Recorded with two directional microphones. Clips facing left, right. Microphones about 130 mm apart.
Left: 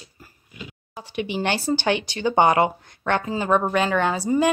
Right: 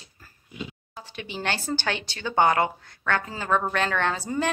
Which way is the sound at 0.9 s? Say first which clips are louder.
Left 9 dB; 15° left (ahead or behind).